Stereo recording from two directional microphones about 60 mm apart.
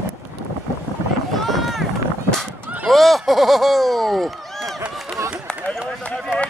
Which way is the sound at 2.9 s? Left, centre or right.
Centre.